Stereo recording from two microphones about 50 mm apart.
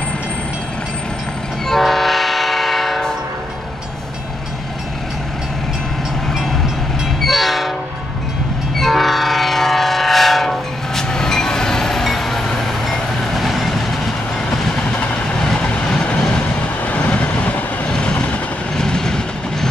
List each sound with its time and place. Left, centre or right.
1.7 s train: centre
7.2 s train: centre
8.7 s train: centre
14.9 s vehicle: left
15.1 s train: centre
16.8 s vehicle: left
17.8 s vehicle: centre
18.8 s train: centre